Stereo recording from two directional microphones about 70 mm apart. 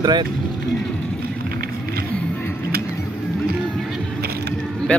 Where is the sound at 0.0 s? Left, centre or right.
Right.